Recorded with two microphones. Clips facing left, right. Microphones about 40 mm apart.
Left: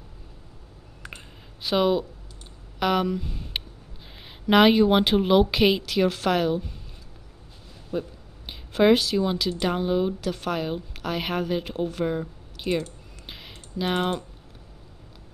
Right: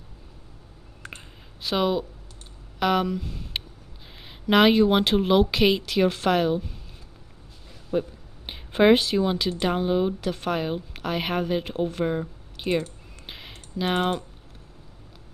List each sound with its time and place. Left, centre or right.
1.6 s speech: centre
7.9 s a woman's voice: centre
8.5 s a sound: right
9.2 s a woman's voice: centre
13.3 s typing: centre